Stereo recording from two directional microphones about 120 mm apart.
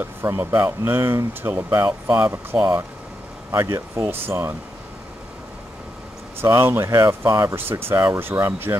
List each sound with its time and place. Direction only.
0.0 s speech: 20° right (ahead or behind)
6.4 s speech: 20° right (ahead or behind)